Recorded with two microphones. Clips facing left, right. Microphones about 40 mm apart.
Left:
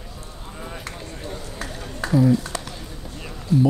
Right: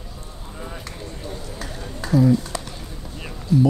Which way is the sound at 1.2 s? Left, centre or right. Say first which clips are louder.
Left 1 dB; left.